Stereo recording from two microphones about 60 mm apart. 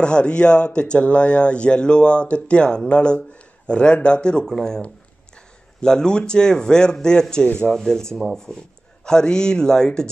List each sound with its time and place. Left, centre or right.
0.0 s speech: centre